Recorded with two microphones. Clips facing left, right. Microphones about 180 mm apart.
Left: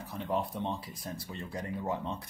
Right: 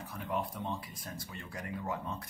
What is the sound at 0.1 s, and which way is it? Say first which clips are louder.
Speech: left 4 dB; 35° left (ahead or behind).